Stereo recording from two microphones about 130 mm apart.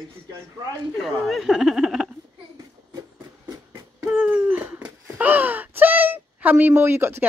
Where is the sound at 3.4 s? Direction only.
25° right (ahead or behind).